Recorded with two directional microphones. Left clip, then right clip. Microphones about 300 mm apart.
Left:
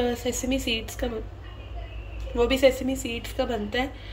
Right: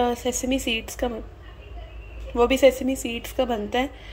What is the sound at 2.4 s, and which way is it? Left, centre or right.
Speech, centre.